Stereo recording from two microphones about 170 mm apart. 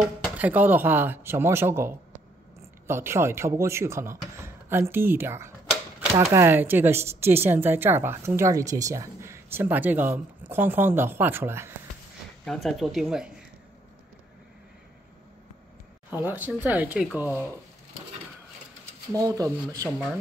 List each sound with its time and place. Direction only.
0.4 s speech: 10° right (ahead or behind)
12.4 s speech: centre (ahead or behind)
16.1 s speech: 10° right (ahead or behind)
19.1 s speech: 20° right (ahead or behind)